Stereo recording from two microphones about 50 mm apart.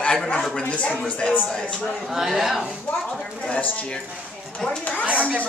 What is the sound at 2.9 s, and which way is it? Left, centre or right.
Speech, left.